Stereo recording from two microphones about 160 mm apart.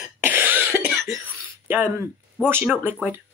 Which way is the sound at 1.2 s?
10° right (ahead or behind).